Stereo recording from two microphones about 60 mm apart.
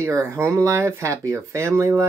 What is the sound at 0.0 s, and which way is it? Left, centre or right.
Speech, right.